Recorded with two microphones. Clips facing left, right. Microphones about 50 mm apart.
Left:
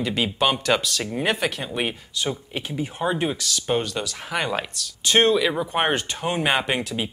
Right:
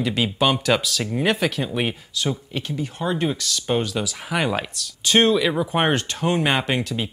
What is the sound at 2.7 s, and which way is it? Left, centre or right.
Speech, centre.